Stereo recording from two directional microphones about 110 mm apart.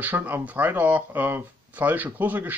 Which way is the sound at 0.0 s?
15° right (ahead or behind).